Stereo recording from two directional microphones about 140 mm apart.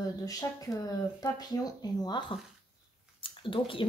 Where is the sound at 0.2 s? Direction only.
25° left (ahead or behind).